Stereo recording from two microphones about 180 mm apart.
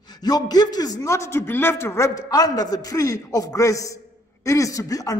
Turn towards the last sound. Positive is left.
turn(degrees=20)  # may be behind; listen again after turning